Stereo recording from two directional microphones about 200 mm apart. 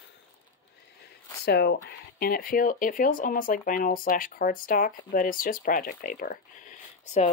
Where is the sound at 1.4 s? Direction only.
55° left (ahead or behind).